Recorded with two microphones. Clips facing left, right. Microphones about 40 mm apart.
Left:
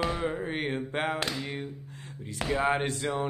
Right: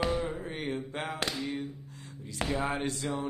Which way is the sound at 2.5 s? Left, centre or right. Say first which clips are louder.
Left 6 dB; left.